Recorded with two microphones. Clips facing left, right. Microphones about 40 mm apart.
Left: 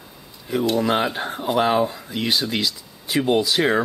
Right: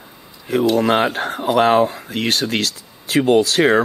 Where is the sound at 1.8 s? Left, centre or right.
Right.